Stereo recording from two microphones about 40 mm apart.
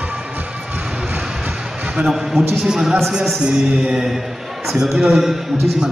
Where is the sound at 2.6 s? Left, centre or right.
Centre.